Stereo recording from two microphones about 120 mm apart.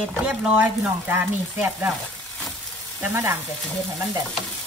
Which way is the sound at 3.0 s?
20° right (ahead or behind).